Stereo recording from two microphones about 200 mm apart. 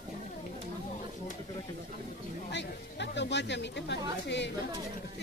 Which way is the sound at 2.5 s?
60° left (ahead or behind).